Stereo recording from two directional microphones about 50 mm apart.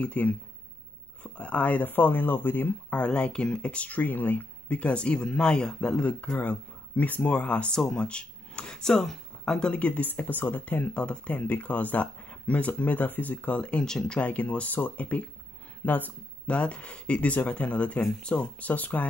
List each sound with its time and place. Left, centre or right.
0.0 s speech: left
2.9 s speech: left
4.6 s speech: left
6.3 s speech: left
7.7 s speech: centre
14.3 s speech: left